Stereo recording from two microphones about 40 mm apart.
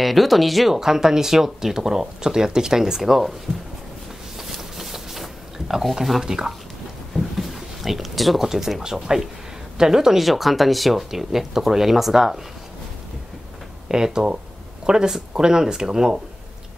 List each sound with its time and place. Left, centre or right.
0.0 s speech: centre
0.7 s speech: centre
4.4 s a sound: centre
6.2 s speech: centre
7.2 s a sound: centre
8.4 s speech: centre
13.8 s speech: centre